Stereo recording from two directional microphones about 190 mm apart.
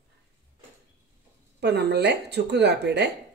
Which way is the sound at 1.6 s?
60° right (ahead or behind).